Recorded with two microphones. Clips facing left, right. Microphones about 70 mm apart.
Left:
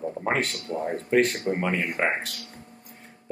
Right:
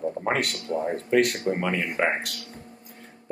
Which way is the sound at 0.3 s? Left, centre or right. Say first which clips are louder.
Even; right.